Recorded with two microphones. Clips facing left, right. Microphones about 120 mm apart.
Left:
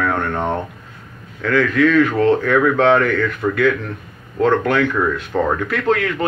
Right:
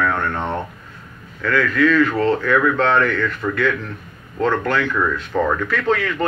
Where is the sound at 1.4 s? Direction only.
55° left (ahead or behind).